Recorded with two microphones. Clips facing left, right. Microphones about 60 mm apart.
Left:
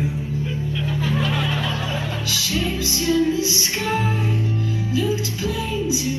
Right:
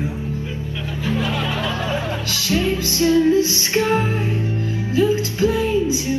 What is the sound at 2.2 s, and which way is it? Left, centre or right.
Music, right.